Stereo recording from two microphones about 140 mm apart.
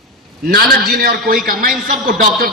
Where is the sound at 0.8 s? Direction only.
90° right.